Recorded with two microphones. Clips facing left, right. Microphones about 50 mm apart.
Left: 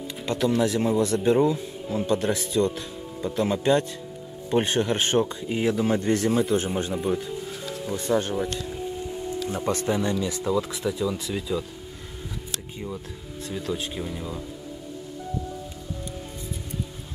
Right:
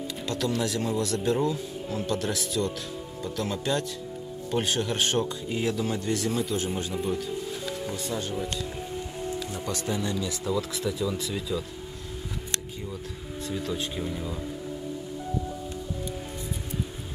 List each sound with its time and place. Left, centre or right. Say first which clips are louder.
0.3 s speech: left 6 dB; left
5.9 s speech: left 6 dB; left
6.9 s speech: left 3 dB; centre
7.9 s speech: left 12 dB; left
9.7 s speech: left 5 dB; left; by 11.6 s centre
13.5 s speech: left 1 dB; centre